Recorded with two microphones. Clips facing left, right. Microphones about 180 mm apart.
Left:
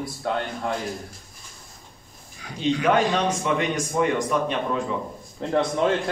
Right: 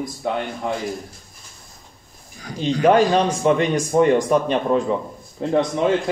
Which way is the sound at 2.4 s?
35° right (ahead or behind).